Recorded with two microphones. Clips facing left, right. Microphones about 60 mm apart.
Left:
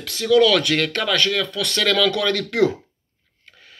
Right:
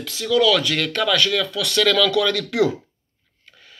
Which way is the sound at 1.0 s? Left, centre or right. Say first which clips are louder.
Right 1 dB; left.